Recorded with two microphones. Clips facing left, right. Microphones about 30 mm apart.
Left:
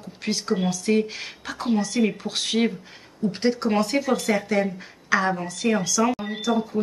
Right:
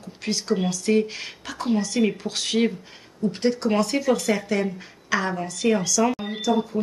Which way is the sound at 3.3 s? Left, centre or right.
Centre.